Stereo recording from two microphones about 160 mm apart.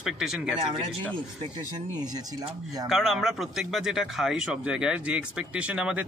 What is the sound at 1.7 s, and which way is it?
Speech, 25° right (ahead or behind).